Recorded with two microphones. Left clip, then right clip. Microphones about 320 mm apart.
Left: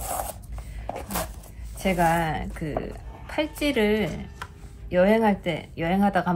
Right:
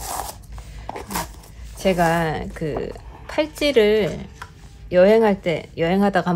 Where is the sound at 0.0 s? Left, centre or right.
Centre.